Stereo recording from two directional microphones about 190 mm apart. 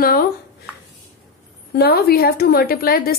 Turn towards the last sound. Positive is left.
turn(degrees=50)  # may be behind; listen again after turning